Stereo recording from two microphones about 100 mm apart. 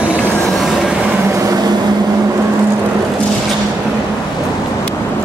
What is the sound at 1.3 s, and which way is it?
Vehicle, 40° right (ahead or behind).